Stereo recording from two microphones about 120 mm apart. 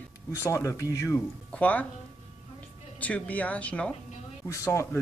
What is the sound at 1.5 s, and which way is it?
Speech, 15° left (ahead or behind).